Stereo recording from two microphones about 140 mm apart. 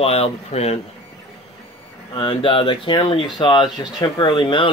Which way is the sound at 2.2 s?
40° left (ahead or behind).